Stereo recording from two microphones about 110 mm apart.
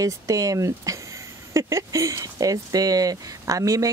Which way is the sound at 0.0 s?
30° right (ahead or behind).